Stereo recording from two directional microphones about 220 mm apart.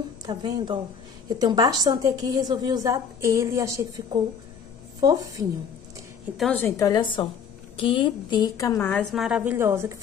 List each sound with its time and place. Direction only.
0.3 s a woman's voice: 20° right (ahead or behind)
6.3 s a woman's voice: 5° left (ahead or behind); by 9.9 s 10° right (ahead or behind)